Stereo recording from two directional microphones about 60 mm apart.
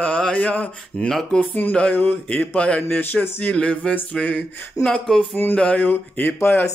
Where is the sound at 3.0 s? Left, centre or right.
Left.